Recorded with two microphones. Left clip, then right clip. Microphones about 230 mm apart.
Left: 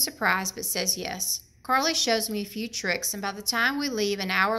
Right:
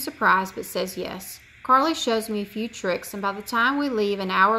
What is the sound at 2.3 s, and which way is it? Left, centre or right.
Speech, left.